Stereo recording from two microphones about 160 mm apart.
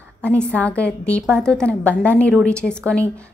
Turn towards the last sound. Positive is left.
turn(degrees=5)  # may be behind; listen again after turning